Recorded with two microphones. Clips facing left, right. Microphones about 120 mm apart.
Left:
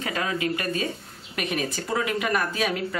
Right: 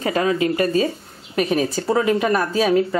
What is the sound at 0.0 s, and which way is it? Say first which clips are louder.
Speech: right 8 dB; 35° right (ahead or behind).